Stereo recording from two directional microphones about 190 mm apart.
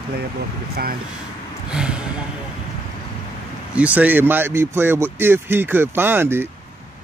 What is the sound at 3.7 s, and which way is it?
Speech, 5° right (ahead or behind).